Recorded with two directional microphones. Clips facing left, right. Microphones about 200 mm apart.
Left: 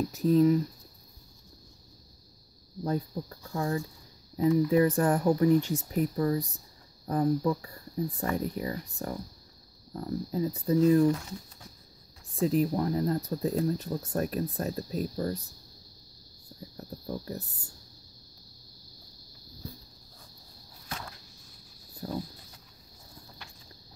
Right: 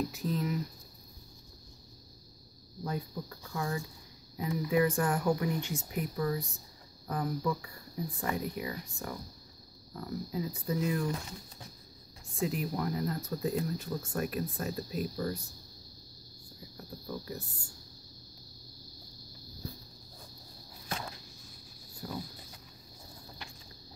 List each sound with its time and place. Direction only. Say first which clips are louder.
0.1 s speech: left 11 dB; 35° left (ahead or behind)
2.8 s speech: left 6 dB; 35° left (ahead or behind)
12.4 s speech: left 7 dB; 35° left (ahead or behind)
16.7 s cricket: left 4 dB; 40° left (ahead or behind)
22.0 s speech: left 5 dB; 35° left (ahead or behind)